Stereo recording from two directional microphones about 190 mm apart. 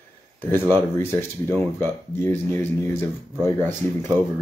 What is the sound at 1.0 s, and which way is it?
Speech, 10° left (ahead or behind).